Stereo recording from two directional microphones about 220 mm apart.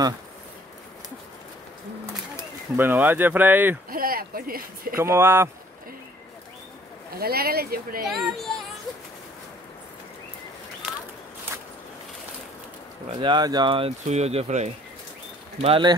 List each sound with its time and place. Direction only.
2.8 s speech: 10° right (ahead or behind)
3.9 s speech: 40° right (ahead or behind)
4.9 s speech: 10° right (ahead or behind)
7.2 s speech: 45° right (ahead or behind)
8.1 s speech: centre (ahead or behind)
13.2 s speech: 20° right (ahead or behind)